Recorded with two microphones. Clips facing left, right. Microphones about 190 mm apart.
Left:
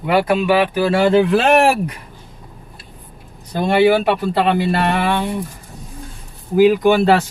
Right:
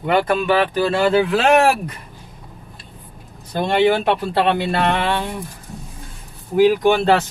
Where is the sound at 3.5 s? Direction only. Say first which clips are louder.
Left 3 dB; 10° left (ahead or behind).